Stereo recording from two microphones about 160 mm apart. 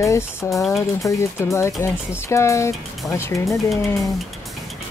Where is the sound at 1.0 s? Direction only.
15° left (ahead or behind).